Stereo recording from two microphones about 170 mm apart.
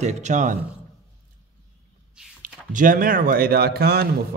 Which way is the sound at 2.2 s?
5° right (ahead or behind).